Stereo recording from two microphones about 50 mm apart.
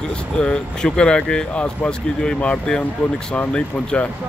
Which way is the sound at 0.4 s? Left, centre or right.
Centre.